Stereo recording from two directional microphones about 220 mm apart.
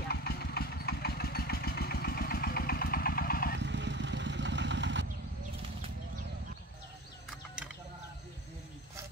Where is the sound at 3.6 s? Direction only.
55° right (ahead or behind).